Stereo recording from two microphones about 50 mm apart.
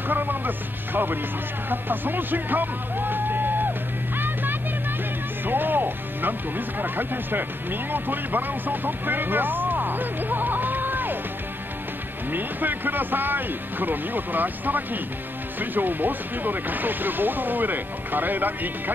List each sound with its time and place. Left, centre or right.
0.1 s speech: right
5.4 s music: right
6.8 s speech: right
12.3 s speech: right